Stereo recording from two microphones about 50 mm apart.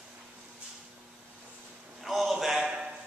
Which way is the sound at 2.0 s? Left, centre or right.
Centre.